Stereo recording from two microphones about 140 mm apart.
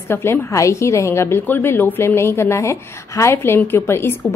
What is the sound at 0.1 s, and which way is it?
A woman's voice, 15° left (ahead or behind).